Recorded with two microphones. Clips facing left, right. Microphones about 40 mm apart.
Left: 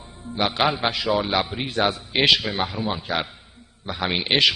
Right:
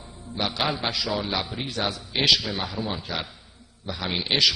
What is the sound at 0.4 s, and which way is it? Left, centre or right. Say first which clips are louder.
A man's voice: left 5 dB; left.